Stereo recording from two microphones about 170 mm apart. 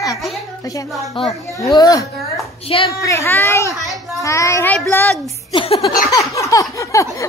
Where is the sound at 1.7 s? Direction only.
20° left (ahead or behind).